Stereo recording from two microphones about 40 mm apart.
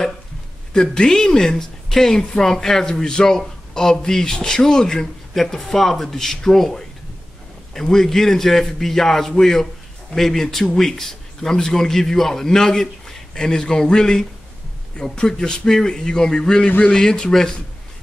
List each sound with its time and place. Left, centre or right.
0.7 s a woman's voice: centre